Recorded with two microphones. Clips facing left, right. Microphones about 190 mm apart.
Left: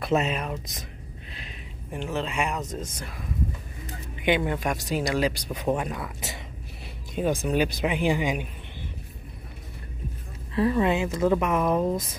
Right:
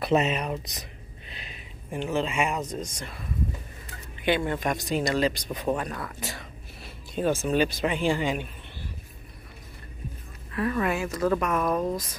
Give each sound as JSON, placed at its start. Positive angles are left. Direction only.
{"t": 0.0, "sound": "speech", "side_deg": 0}
{"t": 4.4, "sound": "speech", "side_deg": 10}
{"t": 10.5, "sound": "speech", "side_deg": 25}